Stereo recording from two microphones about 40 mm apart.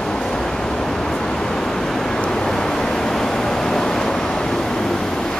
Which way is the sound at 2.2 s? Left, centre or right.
Centre.